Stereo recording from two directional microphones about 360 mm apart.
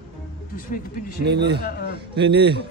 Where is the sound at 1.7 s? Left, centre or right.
Left.